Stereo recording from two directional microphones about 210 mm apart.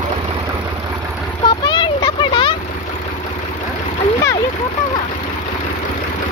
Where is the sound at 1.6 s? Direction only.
20° left (ahead or behind).